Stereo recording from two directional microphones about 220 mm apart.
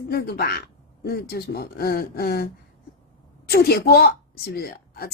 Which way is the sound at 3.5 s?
45° left (ahead or behind).